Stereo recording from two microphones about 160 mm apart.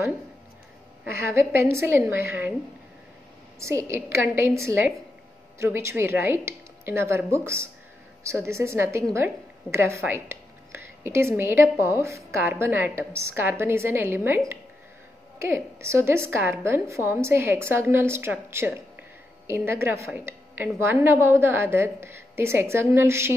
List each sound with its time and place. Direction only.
1.7 s a woman's voice: 15° right (ahead or behind)
3.6 s a woman's voice: 15° right (ahead or behind)